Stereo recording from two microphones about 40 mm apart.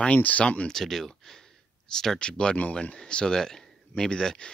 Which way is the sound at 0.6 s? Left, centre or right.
Centre.